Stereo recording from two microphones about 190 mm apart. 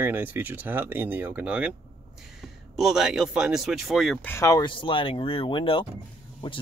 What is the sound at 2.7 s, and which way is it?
Speech, centre (ahead or behind).